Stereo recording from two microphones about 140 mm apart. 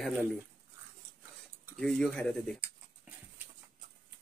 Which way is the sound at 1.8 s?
5° left (ahead or behind).